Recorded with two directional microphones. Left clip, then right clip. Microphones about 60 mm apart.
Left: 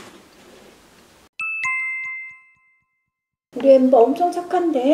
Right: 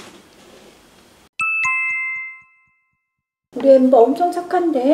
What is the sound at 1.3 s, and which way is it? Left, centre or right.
Music, centre.